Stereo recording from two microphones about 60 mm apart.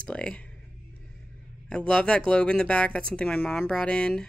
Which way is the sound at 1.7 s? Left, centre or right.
Centre.